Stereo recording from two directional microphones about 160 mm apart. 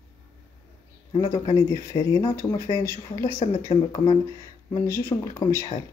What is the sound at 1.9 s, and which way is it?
Speech, 20° left (ahead or behind).